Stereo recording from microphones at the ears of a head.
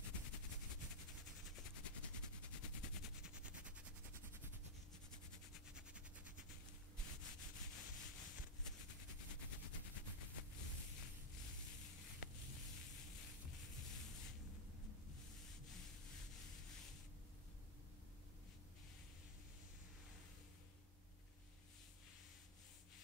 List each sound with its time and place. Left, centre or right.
0.0 s a sound: left
2.4 s machine gun: left
6.5 s rub: left